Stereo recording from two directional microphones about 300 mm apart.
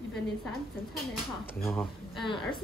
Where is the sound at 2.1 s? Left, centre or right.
Centre.